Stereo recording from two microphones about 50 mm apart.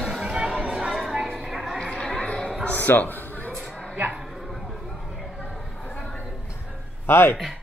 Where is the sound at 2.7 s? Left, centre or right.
Left.